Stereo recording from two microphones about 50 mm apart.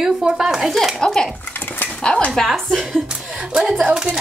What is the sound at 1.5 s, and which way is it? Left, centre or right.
Dog, left.